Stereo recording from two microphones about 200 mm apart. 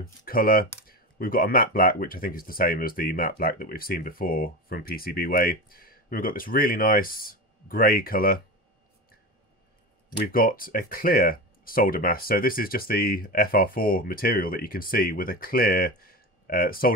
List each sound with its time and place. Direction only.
0.2 s speech: 45° left (ahead or behind)
10.0 s speech: 45° left (ahead or behind)